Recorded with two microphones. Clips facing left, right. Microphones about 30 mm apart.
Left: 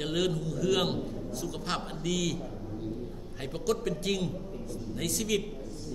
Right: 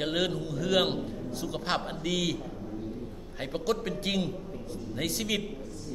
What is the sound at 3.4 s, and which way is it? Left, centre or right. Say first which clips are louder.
A man's voice: right 1 dB; centre.